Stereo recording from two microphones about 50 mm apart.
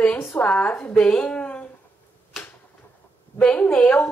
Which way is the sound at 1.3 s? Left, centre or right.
Left.